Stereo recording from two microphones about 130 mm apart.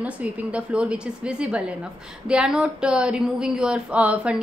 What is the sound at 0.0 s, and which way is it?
A woman's voice, 10° right (ahead or behind).